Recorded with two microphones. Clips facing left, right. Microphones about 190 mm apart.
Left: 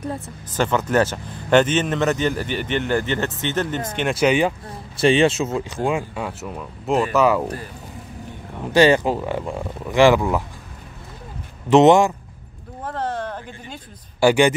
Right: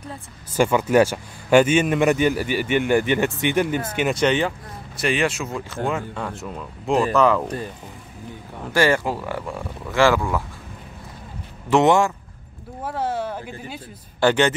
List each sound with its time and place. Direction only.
0.6 s speech: 10° right (ahead or behind)
4.1 s speech: 10° left (ahead or behind)
4.9 s speech: 25° left (ahead or behind); by 7.4 s 5° left (ahead or behind)
8.7 s speech: 20° left (ahead or behind)
11.7 s speech: 20° left (ahead or behind)
12.8 s a sound: 10° right (ahead or behind)
14.2 s speech: 10° left (ahead or behind)